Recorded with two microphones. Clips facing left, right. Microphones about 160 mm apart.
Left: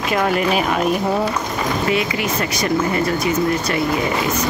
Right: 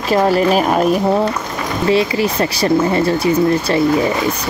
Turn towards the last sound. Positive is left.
turn(degrees=-30)  # may be behind; listen again after turning